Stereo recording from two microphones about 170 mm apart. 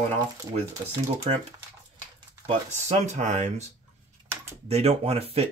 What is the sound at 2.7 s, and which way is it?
Speech, 40° right (ahead or behind).